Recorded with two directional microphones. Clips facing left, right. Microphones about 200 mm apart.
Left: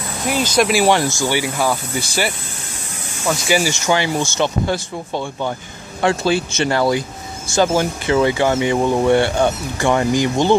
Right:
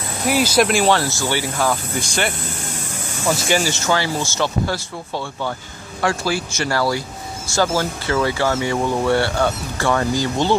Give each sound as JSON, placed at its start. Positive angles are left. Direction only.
{"t": 0.3, "sound": "speech", "side_deg": -10}
{"t": 0.7, "sound": "speech", "side_deg": 5}
{"t": 3.5, "sound": "speech", "side_deg": 15}